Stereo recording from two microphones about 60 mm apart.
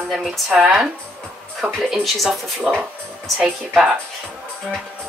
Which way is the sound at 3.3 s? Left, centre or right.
Centre.